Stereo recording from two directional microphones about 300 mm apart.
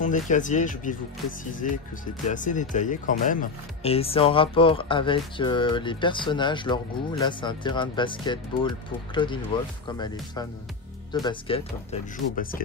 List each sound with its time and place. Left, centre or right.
0.0 s speech: left
11.2 s speech: centre